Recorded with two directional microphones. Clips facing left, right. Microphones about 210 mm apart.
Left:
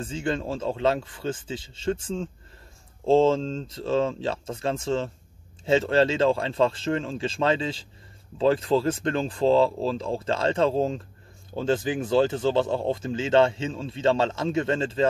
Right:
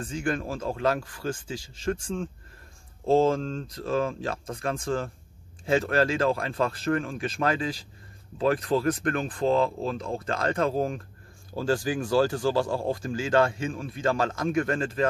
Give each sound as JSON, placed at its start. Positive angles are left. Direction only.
{"t": 0.0, "sound": "speech", "side_deg": 25}
{"t": 3.1, "sound": "speech", "side_deg": 25}